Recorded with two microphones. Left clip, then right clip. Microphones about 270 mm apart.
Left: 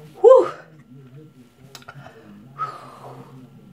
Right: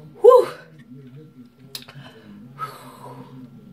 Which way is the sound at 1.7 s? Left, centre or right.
Left.